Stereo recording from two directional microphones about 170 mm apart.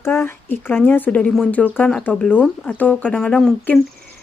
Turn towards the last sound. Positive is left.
turn(degrees=5)  # may be behind; listen again after turning